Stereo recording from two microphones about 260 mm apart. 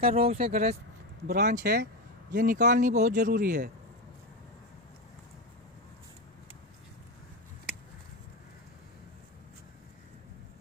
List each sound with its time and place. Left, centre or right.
0.0 s speech: right